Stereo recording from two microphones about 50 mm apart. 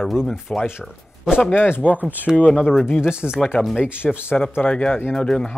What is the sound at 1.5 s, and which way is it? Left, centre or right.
Speech, left.